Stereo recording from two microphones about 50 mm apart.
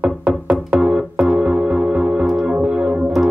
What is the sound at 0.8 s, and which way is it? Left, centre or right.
Keyboard, centre.